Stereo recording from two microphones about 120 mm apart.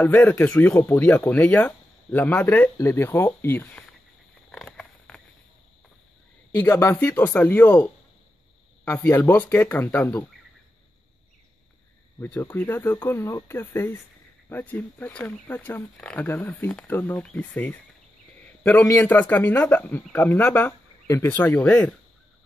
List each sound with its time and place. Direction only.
0.0 s speech: 15° left (ahead or behind)
4.5 s a sound: 5° left (ahead or behind)
6.6 s speech: 20° left (ahead or behind)
12.2 s speech: 15° left (ahead or behind)